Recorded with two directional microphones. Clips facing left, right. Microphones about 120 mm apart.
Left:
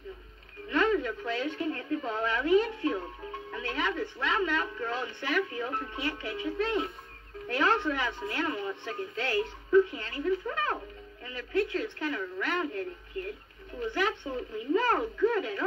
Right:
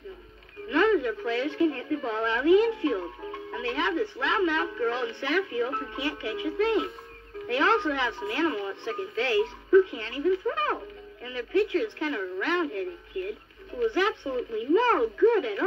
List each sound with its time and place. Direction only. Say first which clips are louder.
0.7 s speech: right 4 dB; 10° right (ahead or behind)